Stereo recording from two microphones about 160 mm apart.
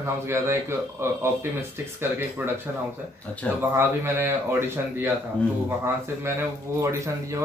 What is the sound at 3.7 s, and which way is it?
Speech, 15° right (ahead or behind).